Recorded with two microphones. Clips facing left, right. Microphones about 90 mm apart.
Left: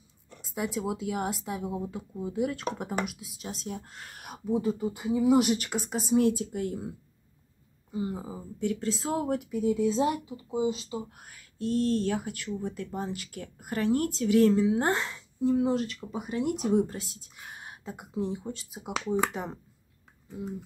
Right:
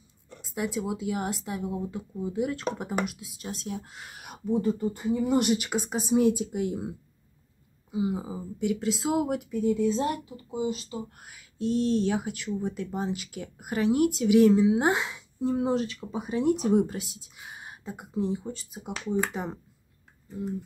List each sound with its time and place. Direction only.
0.4 s speech: centre (ahead or behind)
5.6 s speech: 20° right (ahead or behind)
7.9 s speech: 10° right (ahead or behind)
9.5 s speech: 5° left (ahead or behind); by 11.1 s 20° left (ahead or behind)
11.3 s speech: 20° right (ahead or behind)
15.4 s speech: 25° right (ahead or behind); by 19.6 s centre (ahead or behind)